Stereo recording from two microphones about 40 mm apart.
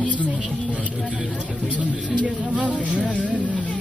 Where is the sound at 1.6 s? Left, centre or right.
Right.